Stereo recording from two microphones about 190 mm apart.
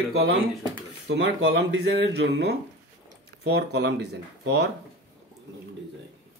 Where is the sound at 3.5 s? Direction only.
60° right (ahead or behind).